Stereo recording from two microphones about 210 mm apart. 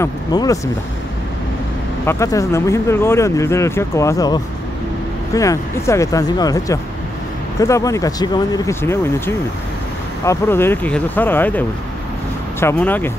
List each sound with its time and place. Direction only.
0.0 s speech: 15° left (ahead or behind)
2.0 s speech: 15° left (ahead or behind)